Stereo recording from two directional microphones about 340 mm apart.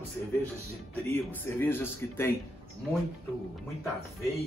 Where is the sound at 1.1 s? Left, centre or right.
Centre.